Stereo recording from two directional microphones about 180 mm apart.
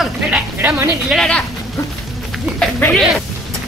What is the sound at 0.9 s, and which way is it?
Speech, centre (ahead or behind).